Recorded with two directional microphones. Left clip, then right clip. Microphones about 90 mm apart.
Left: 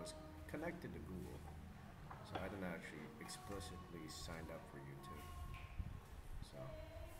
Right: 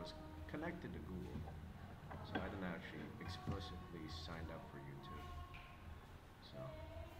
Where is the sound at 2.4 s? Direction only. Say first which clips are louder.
Left 1 dB; 15° left (ahead or behind).